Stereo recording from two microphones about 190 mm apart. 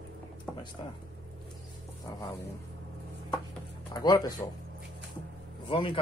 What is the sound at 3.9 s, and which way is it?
Speech, 20° left (ahead or behind).